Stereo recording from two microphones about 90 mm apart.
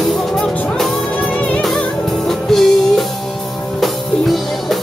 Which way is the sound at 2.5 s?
5° left (ahead or behind).